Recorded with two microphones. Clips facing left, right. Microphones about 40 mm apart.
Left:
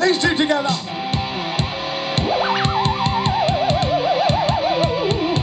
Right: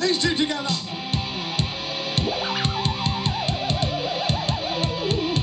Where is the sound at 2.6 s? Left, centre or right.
Left.